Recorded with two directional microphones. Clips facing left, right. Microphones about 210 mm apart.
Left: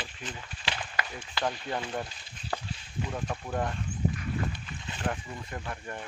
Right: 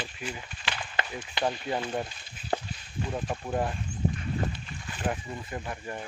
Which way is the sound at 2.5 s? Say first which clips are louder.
Right 5 dB; 30° right (ahead or behind).